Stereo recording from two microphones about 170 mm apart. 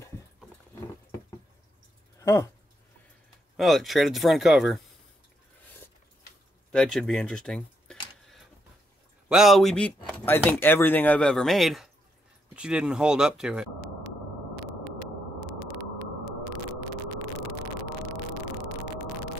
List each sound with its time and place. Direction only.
2.2 s speech: 15° left (ahead or behind)
3.5 s speech: centre (ahead or behind)
6.7 s a sound: 5° left (ahead or behind)
9.3 s speech: centre (ahead or behind)